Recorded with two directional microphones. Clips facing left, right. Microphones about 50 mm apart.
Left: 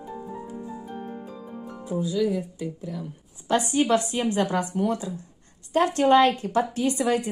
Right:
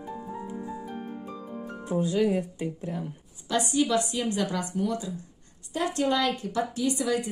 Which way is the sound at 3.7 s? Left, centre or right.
Left.